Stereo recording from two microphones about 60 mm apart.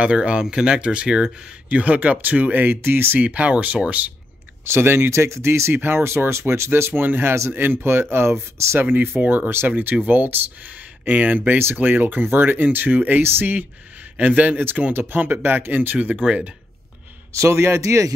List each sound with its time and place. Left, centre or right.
0.0 s speech: centre; by 3.2 s right
3.2 s speech: right
4.6 s speech: right
8.8 s speech: right
17.3 s speech: right